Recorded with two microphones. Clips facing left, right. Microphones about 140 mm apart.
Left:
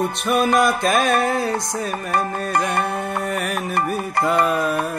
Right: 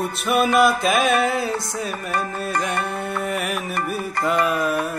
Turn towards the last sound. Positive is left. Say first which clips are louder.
# left 2 dB
turn(degrees=35)  # may be behind; listen again after turning